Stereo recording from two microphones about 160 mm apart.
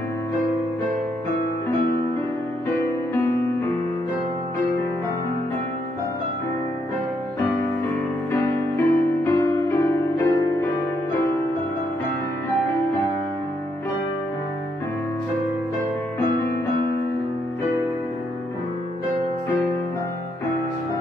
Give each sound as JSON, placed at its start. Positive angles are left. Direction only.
{"t": 8.3, "sound": "music", "side_deg": 15}